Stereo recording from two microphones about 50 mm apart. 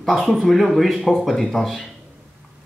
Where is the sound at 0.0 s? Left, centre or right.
Centre.